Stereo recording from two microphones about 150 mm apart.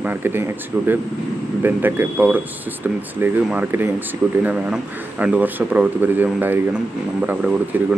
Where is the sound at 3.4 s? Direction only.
10° right (ahead or behind).